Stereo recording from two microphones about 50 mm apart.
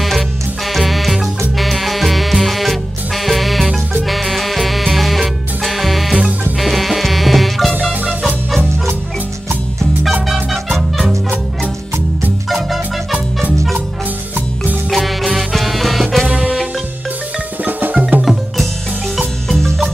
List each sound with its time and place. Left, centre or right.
0.7 s music: centre
10.2 s music: centre
12.4 s marimba: centre
14.9 s music: centre
17.6 s music: right
18.2 s music: centre
19.1 s marimba: centre